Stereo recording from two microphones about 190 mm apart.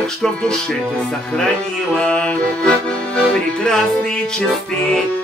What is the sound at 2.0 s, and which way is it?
Accordion, 5° left (ahead or behind).